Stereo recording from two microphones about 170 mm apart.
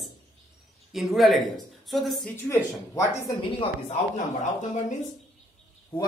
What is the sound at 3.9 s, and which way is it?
Speech, 45° left (ahead or behind).